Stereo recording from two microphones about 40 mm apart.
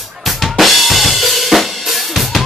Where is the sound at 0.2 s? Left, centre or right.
Centre.